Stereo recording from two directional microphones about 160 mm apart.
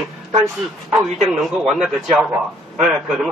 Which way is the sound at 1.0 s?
Centre (ahead or behind).